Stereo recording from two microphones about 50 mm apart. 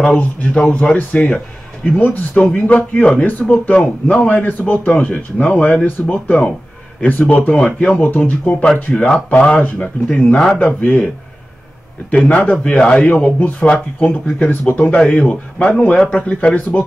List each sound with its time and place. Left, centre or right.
0.2 s a man's voice: left
5.1 s speech: left
5.9 s a man's voice: left
8.0 s speech: left
8.9 s a man's voice: left
9.6 s speech: left
10.0 s speech: centre
10.6 s speech: left
12.3 s a man's voice: left
13.1 s speech: left
13.7 s a man's voice: left
14.0 s speech: left
15.1 s a man's voice: centre